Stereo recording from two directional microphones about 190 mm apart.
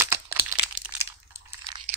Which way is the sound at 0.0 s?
15° right (ahead or behind).